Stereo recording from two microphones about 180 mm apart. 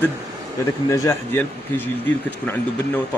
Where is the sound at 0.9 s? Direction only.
15° left (ahead or behind).